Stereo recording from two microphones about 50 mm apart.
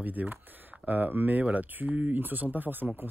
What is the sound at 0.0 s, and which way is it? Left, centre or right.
Speech, right.